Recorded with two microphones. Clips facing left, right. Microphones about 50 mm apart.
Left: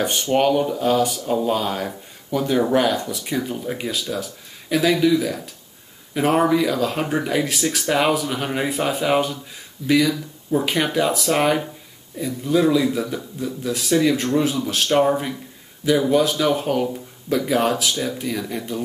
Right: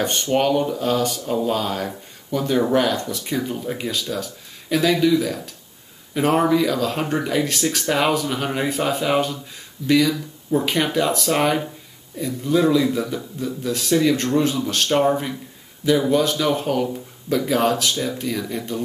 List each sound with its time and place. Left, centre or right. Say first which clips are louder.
0.0 s speech: left 1 dB; centre